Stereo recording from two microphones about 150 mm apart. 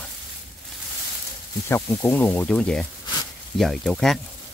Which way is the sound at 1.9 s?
10° left (ahead or behind).